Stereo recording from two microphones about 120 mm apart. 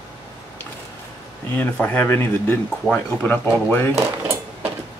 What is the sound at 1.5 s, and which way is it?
Speech, 15° left (ahead or behind).